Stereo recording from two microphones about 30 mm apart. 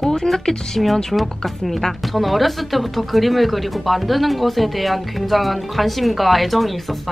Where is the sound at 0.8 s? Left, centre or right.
Centre.